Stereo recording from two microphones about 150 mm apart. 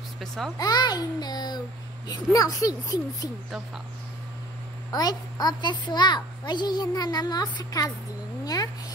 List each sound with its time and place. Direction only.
0.6 s a child's voice: 30° left (ahead or behind)
4.9 s a child's voice: 25° left (ahead or behind)